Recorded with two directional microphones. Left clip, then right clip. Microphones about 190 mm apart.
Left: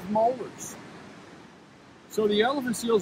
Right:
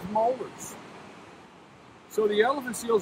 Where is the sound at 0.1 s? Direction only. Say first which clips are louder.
Left 1 dB; 25° right (ahead or behind).